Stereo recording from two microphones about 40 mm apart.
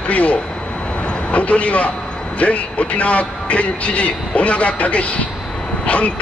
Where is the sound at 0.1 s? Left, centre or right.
Left.